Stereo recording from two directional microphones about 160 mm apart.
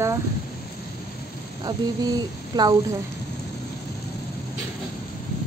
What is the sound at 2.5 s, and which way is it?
Speech, 25° right (ahead or behind).